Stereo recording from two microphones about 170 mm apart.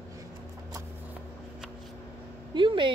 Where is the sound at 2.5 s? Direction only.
30° right (ahead or behind).